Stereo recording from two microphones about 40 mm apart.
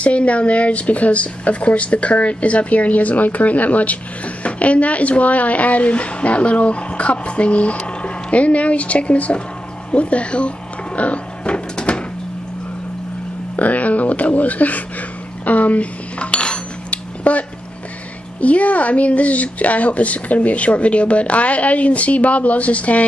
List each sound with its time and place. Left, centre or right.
0.0 s speech: left
11.0 s cupboard open or close: left
13.6 s speech: left
15.4 s cutlery: left
17.2 s a sound: left
18.4 s speech: left